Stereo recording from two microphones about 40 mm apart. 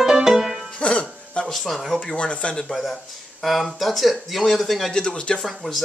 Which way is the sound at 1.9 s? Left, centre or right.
Left.